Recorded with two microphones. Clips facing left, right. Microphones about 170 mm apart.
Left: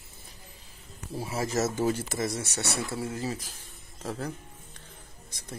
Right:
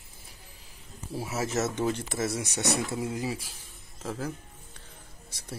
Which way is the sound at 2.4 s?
15° right (ahead or behind).